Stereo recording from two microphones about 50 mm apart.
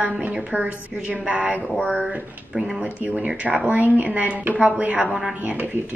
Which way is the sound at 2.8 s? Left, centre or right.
Right.